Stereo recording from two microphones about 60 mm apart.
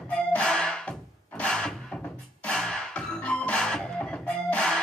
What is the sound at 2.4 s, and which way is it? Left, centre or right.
Music, centre.